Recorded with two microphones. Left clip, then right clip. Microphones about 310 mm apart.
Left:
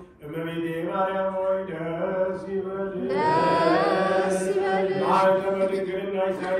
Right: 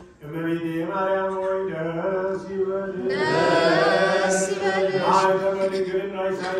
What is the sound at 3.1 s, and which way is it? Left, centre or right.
Chant, centre.